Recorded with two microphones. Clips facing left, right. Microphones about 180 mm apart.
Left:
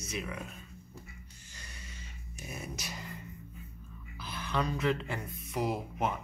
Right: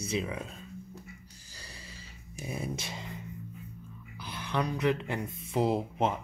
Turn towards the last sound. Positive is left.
turn(degrees=-25)  # may be behind; listen again after turning